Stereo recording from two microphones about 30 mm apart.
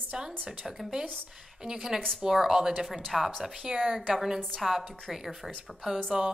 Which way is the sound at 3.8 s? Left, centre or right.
Centre.